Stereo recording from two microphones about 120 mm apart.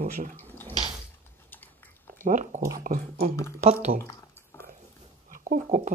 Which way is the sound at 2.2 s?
90° right.